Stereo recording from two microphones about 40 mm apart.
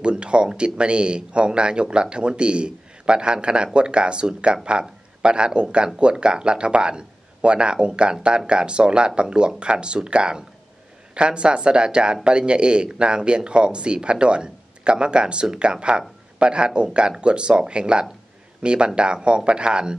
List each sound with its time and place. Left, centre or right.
0.0 s speech: right